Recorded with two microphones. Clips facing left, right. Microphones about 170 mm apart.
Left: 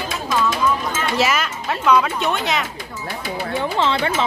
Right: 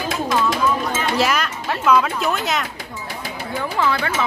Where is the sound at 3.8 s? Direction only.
25° left (ahead or behind).